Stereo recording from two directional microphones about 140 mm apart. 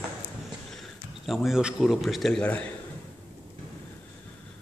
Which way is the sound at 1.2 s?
Centre (ahead or behind).